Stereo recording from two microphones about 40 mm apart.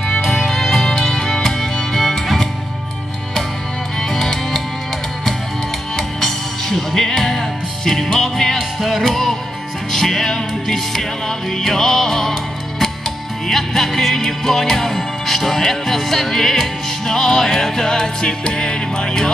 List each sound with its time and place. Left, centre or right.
0.1 s music: centre
4.1 s music: centre
5.9 s music: centre